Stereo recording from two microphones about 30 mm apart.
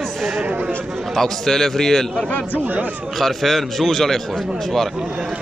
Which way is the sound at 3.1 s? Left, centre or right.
Centre.